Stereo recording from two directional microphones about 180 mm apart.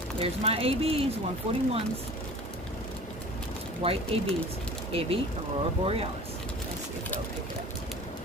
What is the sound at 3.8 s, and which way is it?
A woman's voice, 30° right (ahead or behind).